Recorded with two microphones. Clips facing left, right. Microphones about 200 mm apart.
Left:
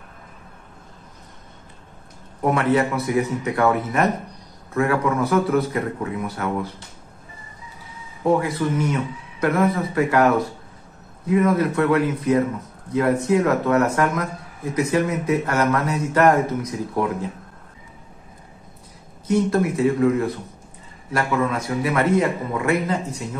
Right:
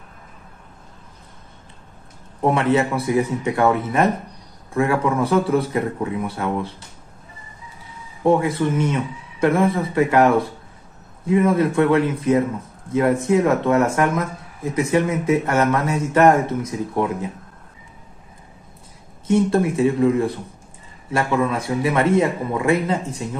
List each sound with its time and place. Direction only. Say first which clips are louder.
2.4 s a man's voice: right 1 dB; 25° right (ahead or behind)
8.2 s a man's voice: right 2 dB; 25° right (ahead or behind)
11.2 s a man's voice: right 1 dB; 25° right (ahead or behind)
19.2 s a man's voice: right 2 dB; 25° right (ahead or behind)